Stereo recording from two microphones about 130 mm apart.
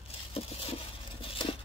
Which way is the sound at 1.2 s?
40° left (ahead or behind).